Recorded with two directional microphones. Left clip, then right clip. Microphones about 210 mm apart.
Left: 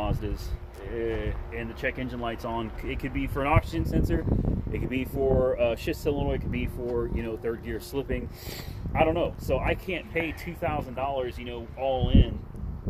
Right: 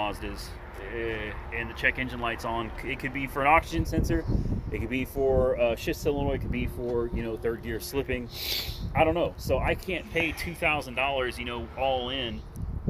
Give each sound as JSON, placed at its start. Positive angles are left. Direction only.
{"t": 0.0, "sound": "speech", "side_deg": 55}